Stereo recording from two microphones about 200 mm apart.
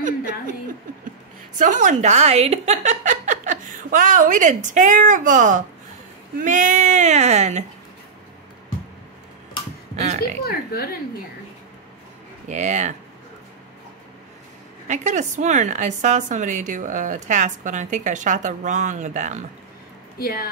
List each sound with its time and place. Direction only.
1.6 s a woman's voice: 40° right (ahead or behind)
9.9 s speech: 35° right (ahead or behind)
10.4 s a woman's voice: 50° left (ahead or behind)
12.4 s a woman's voice: 35° right (ahead or behind)
14.9 s a woman's voice: 35° right (ahead or behind)
20.2 s speech: 50° left (ahead or behind)